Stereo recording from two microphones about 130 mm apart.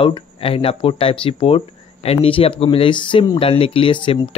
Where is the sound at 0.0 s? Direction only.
40° left (ahead or behind).